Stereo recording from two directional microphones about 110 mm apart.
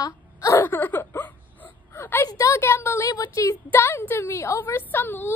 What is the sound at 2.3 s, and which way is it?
Speech, 30° left (ahead or behind).